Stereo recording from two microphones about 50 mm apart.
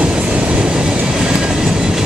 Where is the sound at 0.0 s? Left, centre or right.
Right.